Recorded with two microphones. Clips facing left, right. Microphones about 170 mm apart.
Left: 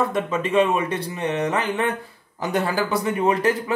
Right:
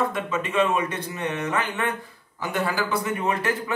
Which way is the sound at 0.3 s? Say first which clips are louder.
Left 4 dB; 30° left (ahead or behind).